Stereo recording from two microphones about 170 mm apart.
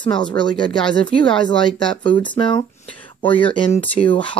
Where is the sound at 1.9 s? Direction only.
30° left (ahead or behind).